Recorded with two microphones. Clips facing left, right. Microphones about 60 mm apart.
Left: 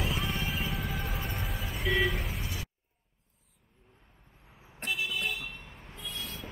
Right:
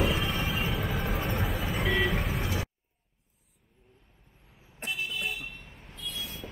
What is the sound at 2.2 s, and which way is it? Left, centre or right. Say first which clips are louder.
Vehicle: right 7 dB; right.